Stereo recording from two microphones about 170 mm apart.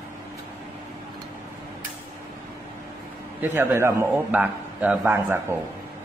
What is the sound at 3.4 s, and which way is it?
Speech, 15° right (ahead or behind).